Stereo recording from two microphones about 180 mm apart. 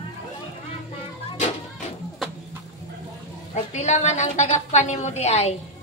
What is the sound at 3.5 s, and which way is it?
A woman's voice, 40° left (ahead or behind).